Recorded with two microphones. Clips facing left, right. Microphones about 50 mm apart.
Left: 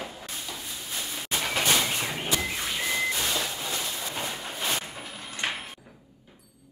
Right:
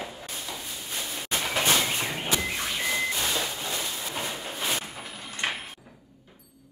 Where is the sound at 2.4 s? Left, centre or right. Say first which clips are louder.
Even; centre.